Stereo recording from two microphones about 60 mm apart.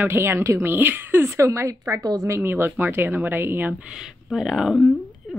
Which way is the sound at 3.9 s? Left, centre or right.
Centre.